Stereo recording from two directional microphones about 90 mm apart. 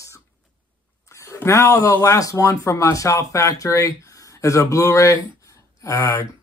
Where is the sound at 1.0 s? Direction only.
35° left (ahead or behind).